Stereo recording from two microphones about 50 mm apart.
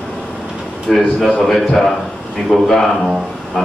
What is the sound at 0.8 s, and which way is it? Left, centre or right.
A man's voice, centre.